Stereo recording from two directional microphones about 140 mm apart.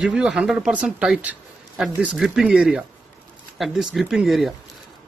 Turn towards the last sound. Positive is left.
turn(degrees=0)  # may be behind; listen again after turning